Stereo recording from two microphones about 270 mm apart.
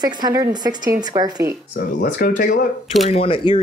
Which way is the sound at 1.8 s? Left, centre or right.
Left.